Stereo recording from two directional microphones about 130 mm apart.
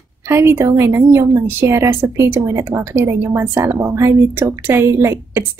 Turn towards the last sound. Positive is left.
turn(degrees=-20)  # may be behind; listen again after turning